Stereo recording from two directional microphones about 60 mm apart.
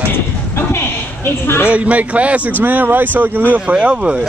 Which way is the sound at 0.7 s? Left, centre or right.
Left.